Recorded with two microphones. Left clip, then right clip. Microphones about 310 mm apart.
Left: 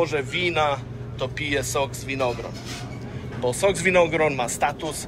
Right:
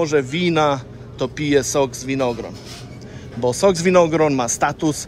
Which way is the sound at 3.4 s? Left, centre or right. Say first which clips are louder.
Right 5 dB; centre.